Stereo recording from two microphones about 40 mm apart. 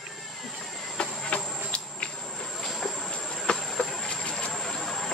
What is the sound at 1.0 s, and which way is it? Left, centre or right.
Insect, left.